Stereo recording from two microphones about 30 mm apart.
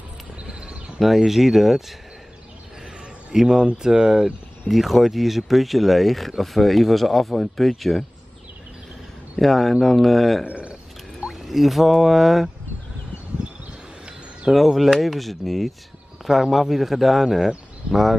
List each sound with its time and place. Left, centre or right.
0.4 s horse: right
0.9 s speech: centre
3.4 s speech: right; by 8.0 s centre
9.4 s speech: centre
10.4 s speech: right
11.2 s music: centre
12.0 s speech: centre
14.5 s speech: centre